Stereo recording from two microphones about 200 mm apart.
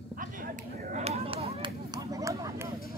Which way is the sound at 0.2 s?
45° right (ahead or behind).